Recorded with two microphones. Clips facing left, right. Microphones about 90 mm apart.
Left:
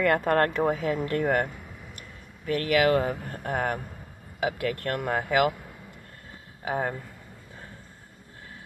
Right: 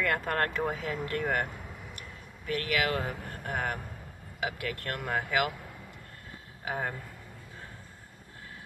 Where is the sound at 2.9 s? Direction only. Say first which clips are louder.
Left 9 dB; 35° left (ahead or behind).